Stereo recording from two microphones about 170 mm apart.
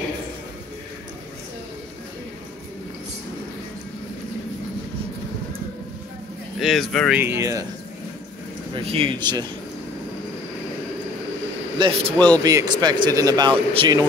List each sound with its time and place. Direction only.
6.6 s speech: centre (ahead or behind)
7.2 s speech: 15° right (ahead or behind)
8.7 s speech: 35° right (ahead or behind)
11.8 s speech: 25° right (ahead or behind)